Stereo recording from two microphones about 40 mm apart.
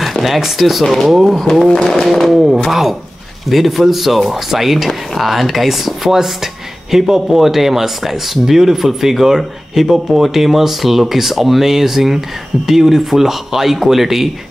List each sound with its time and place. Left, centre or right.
0.2 s speech: centre